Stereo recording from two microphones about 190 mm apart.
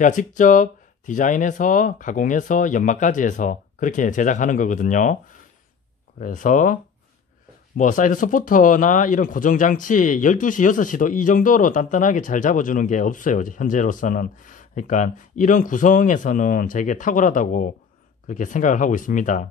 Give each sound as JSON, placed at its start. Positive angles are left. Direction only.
{"t": 0.0, "sound": "speech", "side_deg": 45}
{"t": 6.1, "sound": "speech", "side_deg": 45}